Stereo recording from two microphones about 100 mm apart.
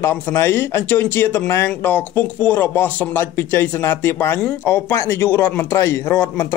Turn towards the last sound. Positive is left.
turn(degrees=25)  # may be behind; listen again after turning